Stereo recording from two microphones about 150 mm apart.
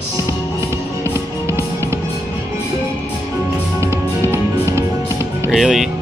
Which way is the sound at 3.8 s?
20° right (ahead or behind).